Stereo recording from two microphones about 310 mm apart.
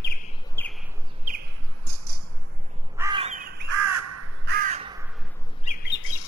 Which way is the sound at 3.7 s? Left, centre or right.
Right.